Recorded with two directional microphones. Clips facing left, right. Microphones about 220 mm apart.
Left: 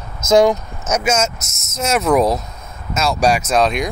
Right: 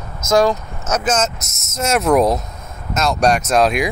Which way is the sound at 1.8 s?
Centre (ahead or behind).